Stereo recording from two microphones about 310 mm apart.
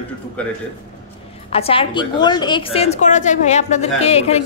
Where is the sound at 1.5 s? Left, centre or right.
Centre.